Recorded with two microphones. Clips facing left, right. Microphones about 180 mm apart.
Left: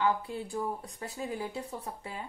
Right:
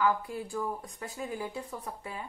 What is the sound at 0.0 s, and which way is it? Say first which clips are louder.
Speech: right 1 dB; 30° left (ahead or behind).